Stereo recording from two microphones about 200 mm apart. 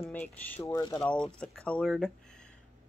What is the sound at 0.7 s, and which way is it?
Speech, 15° left (ahead or behind).